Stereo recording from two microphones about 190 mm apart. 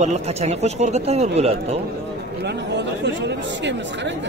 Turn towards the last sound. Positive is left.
turn(degrees=-70)  # may be behind; listen again after turning